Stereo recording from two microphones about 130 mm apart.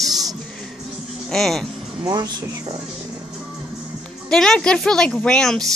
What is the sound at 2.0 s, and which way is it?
Speech, 30° right (ahead or behind).